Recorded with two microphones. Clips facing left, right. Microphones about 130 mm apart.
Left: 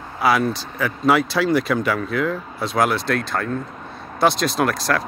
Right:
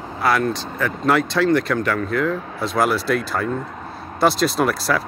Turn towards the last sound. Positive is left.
turn(degrees=-5)  # may be behind; listen again after turning